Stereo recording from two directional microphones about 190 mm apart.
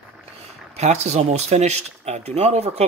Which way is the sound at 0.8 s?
35° right (ahead or behind).